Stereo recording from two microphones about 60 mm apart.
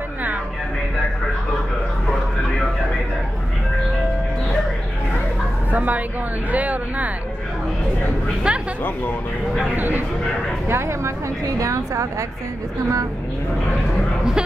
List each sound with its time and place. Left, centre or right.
5.7 s speech: right
8.5 s speech: centre
9.8 s speech: right
10.7 s a woman's voice: right